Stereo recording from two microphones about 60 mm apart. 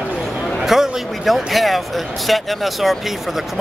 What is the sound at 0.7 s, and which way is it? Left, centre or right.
Speech, centre.